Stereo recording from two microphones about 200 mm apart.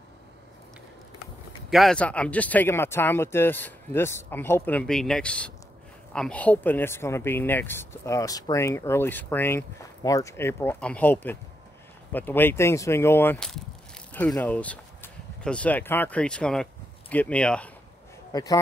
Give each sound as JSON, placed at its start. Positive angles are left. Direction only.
{"t": 1.7, "sound": "speech", "side_deg": 0}
{"t": 18.3, "sound": "a man's voice", "side_deg": 20}